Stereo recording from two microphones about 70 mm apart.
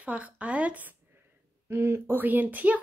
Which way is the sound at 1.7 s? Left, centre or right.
Right.